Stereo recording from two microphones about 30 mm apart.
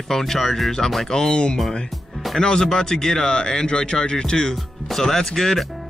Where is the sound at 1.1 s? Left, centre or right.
Left.